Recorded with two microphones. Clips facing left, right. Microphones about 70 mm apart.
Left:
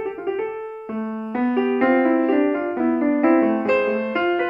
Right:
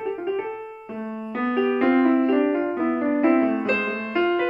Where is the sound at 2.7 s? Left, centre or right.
Centre.